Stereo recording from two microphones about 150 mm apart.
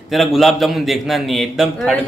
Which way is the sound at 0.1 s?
Centre (ahead or behind).